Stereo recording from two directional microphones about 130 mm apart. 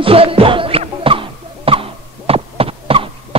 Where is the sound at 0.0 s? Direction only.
45° right (ahead or behind).